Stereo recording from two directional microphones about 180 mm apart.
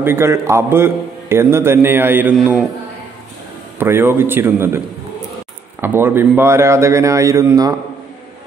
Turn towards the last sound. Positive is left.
turn(degrees=-20)  # may be behind; listen again after turning